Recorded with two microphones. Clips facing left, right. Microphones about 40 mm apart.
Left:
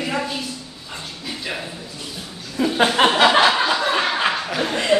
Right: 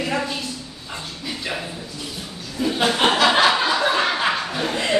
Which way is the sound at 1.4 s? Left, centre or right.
Centre.